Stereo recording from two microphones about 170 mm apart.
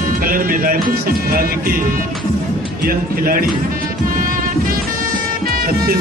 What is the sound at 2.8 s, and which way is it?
Speech, 55° right (ahead or behind).